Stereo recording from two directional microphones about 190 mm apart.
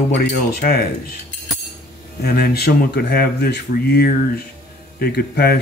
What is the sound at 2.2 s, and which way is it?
Speech, 55° left (ahead or behind).